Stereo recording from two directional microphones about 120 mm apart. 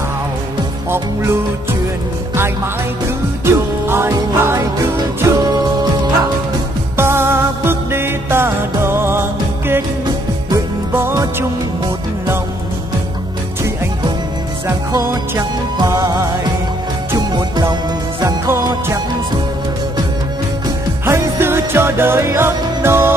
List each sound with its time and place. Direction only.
0.8 s music: 20° right (ahead or behind)
2.3 s speech: 20° right (ahead or behind)
3.4 s music: 20° right (ahead or behind)
7.0 s music: 20° right (ahead or behind)
10.9 s music: 20° right (ahead or behind)
14.9 s music: 25° right (ahead or behind)
17.3 s music: 35° right (ahead or behind)
21.0 s music: 20° right (ahead or behind)